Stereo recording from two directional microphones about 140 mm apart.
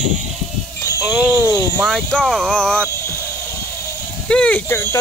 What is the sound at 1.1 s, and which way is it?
Speech, 15° right (ahead or behind).